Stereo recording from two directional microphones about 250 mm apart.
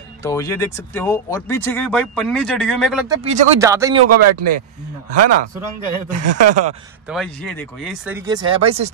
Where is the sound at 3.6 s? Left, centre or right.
Centre.